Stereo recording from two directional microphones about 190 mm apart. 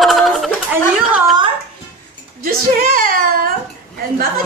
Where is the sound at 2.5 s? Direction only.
50° right (ahead or behind).